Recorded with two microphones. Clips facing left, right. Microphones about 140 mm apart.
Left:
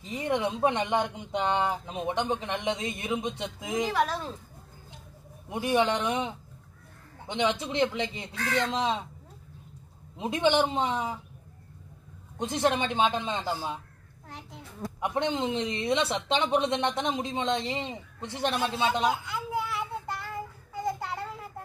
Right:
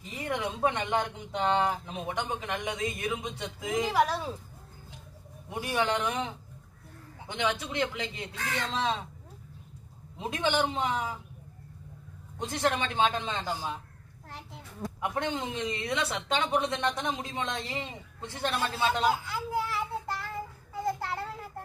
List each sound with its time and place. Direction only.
0.0 s speech: 25° left (ahead or behind)
3.9 s speech: 10° right (ahead or behind)
5.5 s speech: 20° left (ahead or behind)
10.1 s speech: 20° left (ahead or behind)
12.4 s speech: 20° left (ahead or behind)
15.0 s speech: 20° left (ahead or behind)
19.0 s child singing: centre (ahead or behind)